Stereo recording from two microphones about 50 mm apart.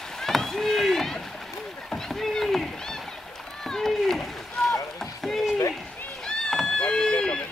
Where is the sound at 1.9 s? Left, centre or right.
Centre.